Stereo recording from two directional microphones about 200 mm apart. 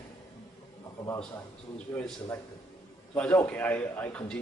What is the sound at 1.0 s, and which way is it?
A man's voice, 15° left (ahead or behind).